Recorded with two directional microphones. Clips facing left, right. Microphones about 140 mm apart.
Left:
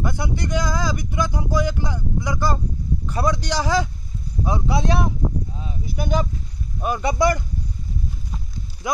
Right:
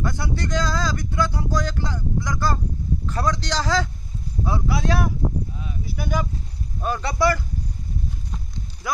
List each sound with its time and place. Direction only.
0.0 s speech: 15° left (ahead or behind)
8.8 s speech: 20° left (ahead or behind)